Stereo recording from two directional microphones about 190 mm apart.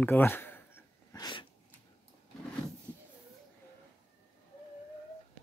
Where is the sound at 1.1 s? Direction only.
20° left (ahead or behind).